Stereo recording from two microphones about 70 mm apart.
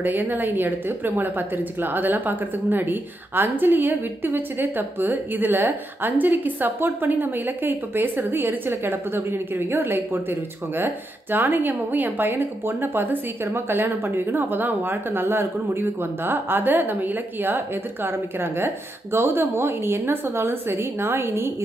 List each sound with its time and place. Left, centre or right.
0.0 s a woman's voice: right